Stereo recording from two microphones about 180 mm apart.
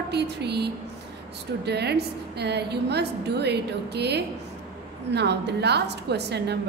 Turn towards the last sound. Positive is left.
turn(degrees=-70)  # may be behind; listen again after turning